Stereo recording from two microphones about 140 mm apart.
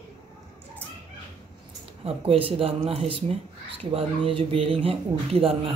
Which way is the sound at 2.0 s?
40° right (ahead or behind).